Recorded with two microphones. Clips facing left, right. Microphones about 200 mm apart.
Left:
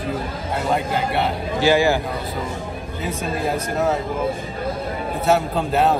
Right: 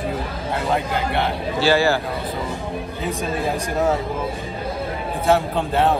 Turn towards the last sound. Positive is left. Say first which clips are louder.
# left 1 dB
turn(degrees=0)  # may be behind; listen again after turning